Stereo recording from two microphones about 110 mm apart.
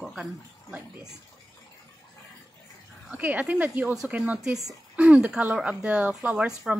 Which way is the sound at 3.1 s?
10° right (ahead or behind).